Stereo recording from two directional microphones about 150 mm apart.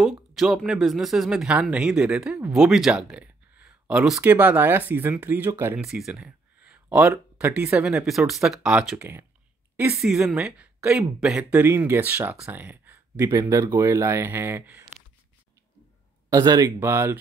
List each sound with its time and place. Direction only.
0.0 s speech: centre (ahead or behind)
5.8 s speech: 5° right (ahead or behind)
16.3 s speech: 25° right (ahead or behind)